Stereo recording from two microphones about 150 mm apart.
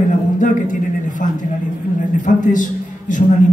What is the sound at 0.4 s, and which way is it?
A man's voice, 60° left (ahead or behind).